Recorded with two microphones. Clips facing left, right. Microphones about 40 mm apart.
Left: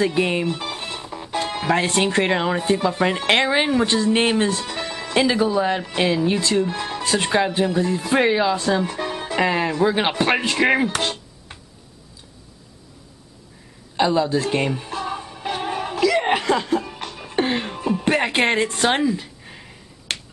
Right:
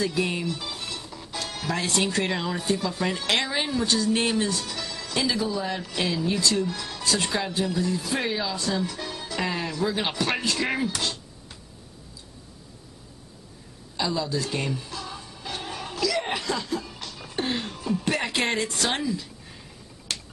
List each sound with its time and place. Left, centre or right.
0.0 s speech: left
13.9 s music: left
20.1 s finger snapping: left